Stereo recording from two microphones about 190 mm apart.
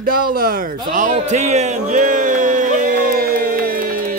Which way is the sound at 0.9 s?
40° right (ahead or behind).